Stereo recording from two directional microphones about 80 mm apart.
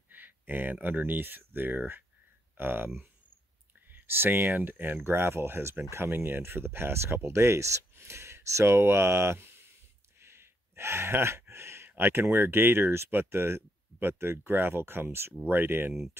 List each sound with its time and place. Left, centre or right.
0.1 s speech: right
10.1 s a sound: right
11.9 s speech: right